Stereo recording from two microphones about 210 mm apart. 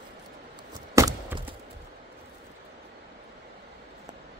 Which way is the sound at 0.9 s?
15° right (ahead or behind).